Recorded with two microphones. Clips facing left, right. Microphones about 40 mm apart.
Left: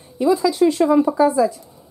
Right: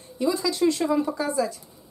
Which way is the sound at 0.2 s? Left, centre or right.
Centre.